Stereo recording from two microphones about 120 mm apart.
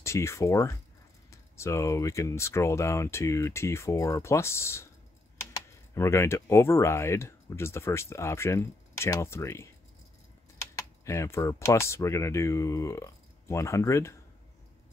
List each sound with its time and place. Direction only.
0.0 s speech: 25° left (ahead or behind)
10.8 s speech: 25° left (ahead or behind)